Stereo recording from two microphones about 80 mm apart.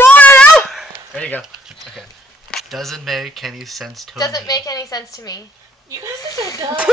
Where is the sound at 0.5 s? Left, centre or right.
Centre.